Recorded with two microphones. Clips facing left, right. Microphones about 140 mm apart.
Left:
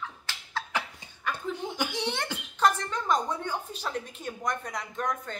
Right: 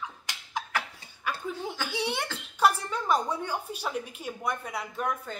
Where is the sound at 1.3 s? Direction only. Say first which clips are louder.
Even; 10° right (ahead or behind).